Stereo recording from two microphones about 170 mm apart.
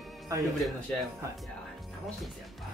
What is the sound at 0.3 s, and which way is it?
Speech, 20° right (ahead or behind).